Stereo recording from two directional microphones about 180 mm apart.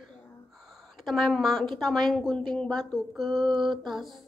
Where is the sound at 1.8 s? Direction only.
Centre (ahead or behind).